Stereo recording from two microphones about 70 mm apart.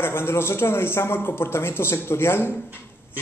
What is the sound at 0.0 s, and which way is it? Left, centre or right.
A man's voice, left.